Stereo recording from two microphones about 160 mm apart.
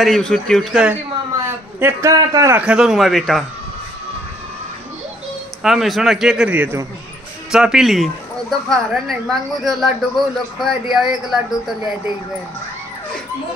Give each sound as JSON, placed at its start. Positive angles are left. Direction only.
{"t": 0.0, "sound": "a woman's voice", "side_deg": 5}
{"t": 1.4, "sound": "a man's voice", "side_deg": -15}
{"t": 2.6, "sound": "a woman's voice", "side_deg": -5}
{"t": 5.6, "sound": "a woman's voice", "side_deg": 0}